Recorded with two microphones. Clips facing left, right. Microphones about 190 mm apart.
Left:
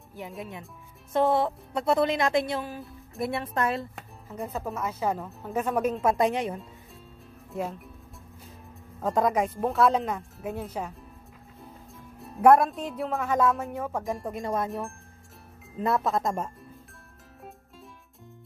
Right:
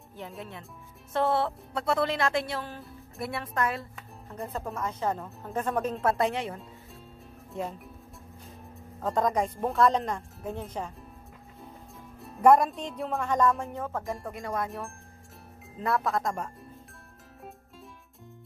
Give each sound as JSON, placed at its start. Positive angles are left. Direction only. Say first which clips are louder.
{"t": 0.4, "sound": "a woman's voice", "louder": "left 3 dB", "side_deg": 15}
{"t": 4.3, "sound": "speech", "louder": "left 2 dB", "side_deg": 5}
{"t": 9.0, "sound": "speech", "louder": "left 2 dB", "side_deg": 5}
{"t": 12.2, "sound": "speech", "louder": "left 2 dB", "side_deg": 0}
{"t": 14.3, "sound": "a woman's voice", "louder": "left 3 dB", "side_deg": 25}
{"t": 14.7, "sound": "speech", "louder": "left 4 dB", "side_deg": 0}
{"t": 15.8, "sound": "a woman's voice", "louder": "left 2 dB", "side_deg": 25}